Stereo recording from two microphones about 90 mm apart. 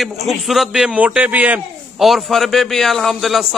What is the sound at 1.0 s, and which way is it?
Speech, 15° right (ahead or behind).